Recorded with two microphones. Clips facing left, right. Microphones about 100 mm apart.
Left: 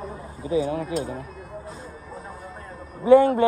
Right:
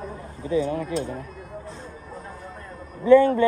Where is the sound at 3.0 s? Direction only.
50° right (ahead or behind).